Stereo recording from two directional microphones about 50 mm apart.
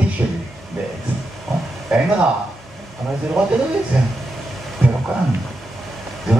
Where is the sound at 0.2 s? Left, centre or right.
Right.